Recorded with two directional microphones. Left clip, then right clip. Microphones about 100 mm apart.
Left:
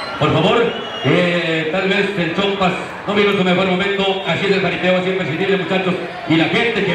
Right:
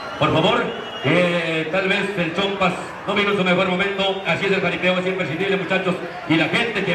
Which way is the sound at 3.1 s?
35° right (ahead or behind).